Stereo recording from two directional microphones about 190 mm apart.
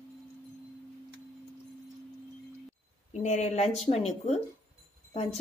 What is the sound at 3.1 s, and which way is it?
Speech, 35° left (ahead or behind).